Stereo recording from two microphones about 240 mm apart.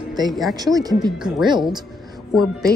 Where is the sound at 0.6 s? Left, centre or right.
Centre.